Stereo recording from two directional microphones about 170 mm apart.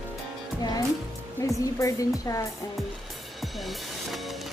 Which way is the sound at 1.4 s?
20° left (ahead or behind).